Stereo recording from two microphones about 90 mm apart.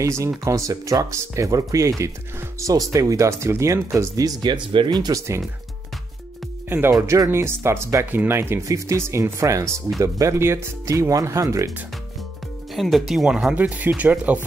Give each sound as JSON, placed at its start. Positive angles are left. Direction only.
{"t": 0.0, "sound": "speech", "side_deg": -35}
{"t": 4.4, "sound": "speech", "side_deg": -60}
{"t": 7.0, "sound": "speech", "side_deg": -30}
{"t": 12.7, "sound": "speech", "side_deg": 0}